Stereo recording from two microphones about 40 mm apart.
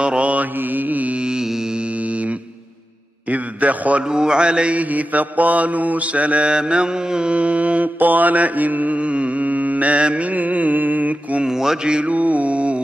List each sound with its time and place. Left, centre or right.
0.0 s mantra: right
0.6 s mantra: right
1.2 s mantra: centre
3.3 s a sound: right
4.1 s mantra: centre
4.7 s mantra: right
6.5 s mantra: right
8.0 s mantra: right
11.4 s mantra: centre
11.9 s mantra: right